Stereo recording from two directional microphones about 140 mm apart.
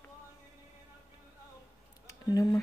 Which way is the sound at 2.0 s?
25° left (ahead or behind).